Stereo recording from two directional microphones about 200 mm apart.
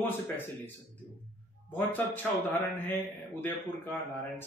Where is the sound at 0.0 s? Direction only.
10° left (ahead or behind).